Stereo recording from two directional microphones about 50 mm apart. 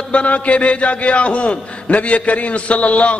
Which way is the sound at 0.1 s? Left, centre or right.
Left.